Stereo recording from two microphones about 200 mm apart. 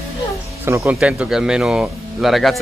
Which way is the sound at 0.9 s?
5° right (ahead or behind).